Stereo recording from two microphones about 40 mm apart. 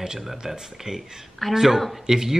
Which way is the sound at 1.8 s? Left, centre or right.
Centre.